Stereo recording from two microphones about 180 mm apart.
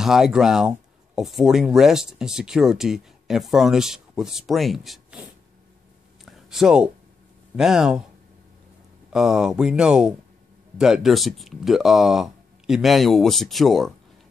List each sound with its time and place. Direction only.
0.0 s speech: centre (ahead or behind)
6.2 s a sound: centre (ahead or behind)
7.5 s speech: 5° right (ahead or behind)
9.1 s speech: 5° right (ahead or behind)